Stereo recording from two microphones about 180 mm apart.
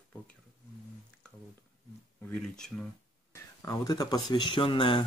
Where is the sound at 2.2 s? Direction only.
5° left (ahead or behind).